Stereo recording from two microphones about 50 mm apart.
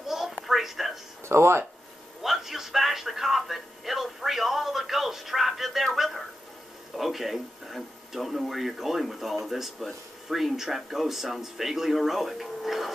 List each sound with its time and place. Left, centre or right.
0.1 s a sound: centre
0.5 s television: centre
1.2 s speech: right
2.2 s music: centre
5.9 s a sound: centre
7.0 s speech: centre